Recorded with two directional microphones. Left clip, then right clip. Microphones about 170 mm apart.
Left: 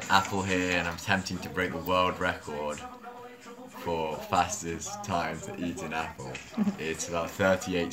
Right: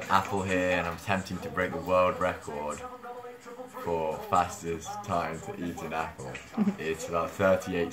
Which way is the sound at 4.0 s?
15° right (ahead or behind).